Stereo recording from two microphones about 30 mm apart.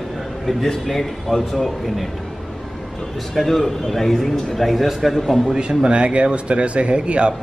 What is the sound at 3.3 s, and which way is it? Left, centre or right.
A man's voice, centre.